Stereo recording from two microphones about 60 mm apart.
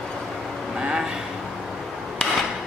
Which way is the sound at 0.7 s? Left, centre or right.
Centre.